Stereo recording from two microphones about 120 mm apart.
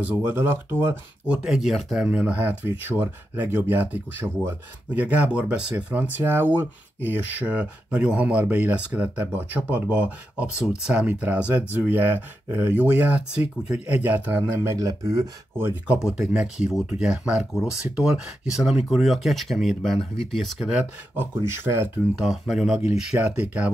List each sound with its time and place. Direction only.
0.2 s speech: 15° right (ahead or behind)
15.5 s speech: 20° right (ahead or behind)
16.0 s speech: 5° right (ahead or behind)
21.5 s speech: 20° right (ahead or behind)
22.2 s speech: centre (ahead or behind)